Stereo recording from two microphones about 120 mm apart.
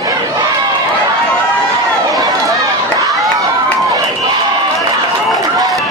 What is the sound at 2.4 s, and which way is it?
Run, 25° right (ahead or behind).